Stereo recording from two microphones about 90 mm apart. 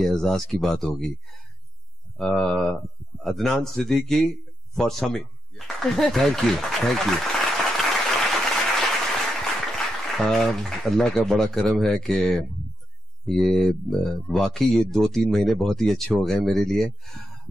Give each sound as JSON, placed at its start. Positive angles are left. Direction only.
{"t": 0.0, "sound": "speech", "side_deg": 5}
{"t": 2.1, "sound": "speech", "side_deg": 5}